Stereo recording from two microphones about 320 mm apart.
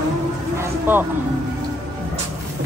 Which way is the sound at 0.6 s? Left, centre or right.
Centre.